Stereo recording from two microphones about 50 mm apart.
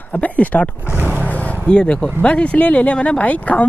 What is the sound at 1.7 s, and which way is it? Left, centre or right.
Speech, centre.